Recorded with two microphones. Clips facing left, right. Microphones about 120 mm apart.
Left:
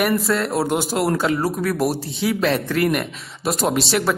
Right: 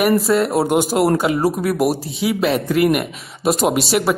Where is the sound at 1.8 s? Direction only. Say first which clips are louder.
Right 3 dB; 5° right (ahead or behind); by 3.8 s 20° right (ahead or behind).